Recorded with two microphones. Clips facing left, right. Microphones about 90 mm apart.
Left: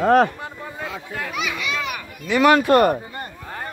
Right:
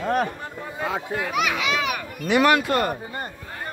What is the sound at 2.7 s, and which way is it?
Speech, 65° left (ahead or behind).